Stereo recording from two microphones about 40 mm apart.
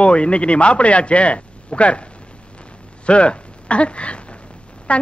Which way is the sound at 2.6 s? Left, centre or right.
Left.